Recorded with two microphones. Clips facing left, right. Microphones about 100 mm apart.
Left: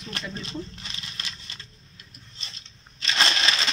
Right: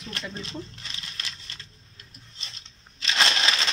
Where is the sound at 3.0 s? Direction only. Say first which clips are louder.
Even; 5° right (ahead or behind).